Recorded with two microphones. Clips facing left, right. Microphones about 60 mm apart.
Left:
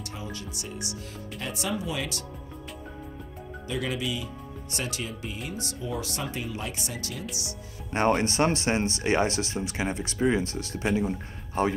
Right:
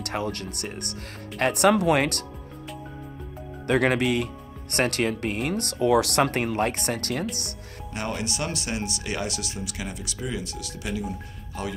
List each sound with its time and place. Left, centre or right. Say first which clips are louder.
0.0 s speech: right 8 dB; right
3.6 s speech: right 9 dB; right
7.9 s a man's voice: left 7 dB; left